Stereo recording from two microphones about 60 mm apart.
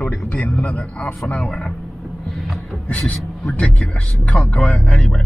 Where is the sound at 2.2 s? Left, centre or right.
Centre.